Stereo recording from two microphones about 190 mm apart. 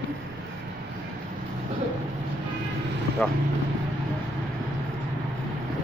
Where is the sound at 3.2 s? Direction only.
5° left (ahead or behind).